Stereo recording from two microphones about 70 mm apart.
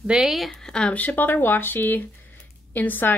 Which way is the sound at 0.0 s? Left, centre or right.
Centre.